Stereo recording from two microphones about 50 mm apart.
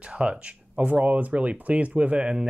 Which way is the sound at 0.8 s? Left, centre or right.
Right.